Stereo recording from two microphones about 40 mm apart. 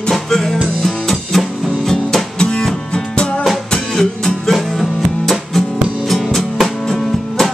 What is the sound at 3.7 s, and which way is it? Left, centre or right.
Music, centre.